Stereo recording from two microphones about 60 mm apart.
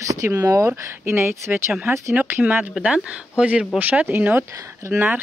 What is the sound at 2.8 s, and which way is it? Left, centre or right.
Speech, centre.